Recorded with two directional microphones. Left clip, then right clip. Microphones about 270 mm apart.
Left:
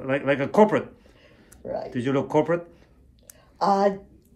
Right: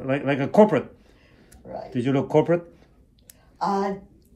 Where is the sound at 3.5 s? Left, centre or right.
Left.